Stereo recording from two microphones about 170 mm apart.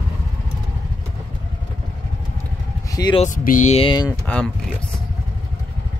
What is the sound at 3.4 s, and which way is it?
Speech, 45° left (ahead or behind).